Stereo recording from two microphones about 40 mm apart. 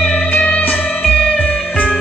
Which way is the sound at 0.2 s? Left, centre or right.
Left.